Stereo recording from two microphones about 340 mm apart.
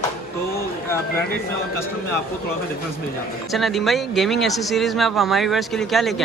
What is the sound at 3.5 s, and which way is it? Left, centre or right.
Speech, centre.